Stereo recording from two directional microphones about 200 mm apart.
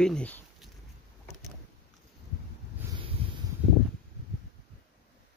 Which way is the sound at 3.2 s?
30° right (ahead or behind).